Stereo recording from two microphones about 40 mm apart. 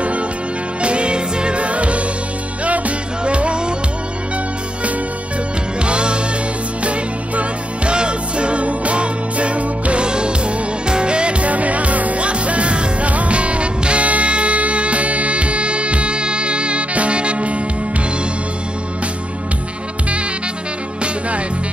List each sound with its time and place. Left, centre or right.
0.7 s music: right
3.3 s music: right
5.8 s music: right